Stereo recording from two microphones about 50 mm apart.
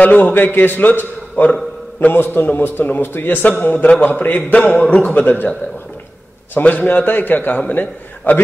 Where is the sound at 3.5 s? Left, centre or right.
Left.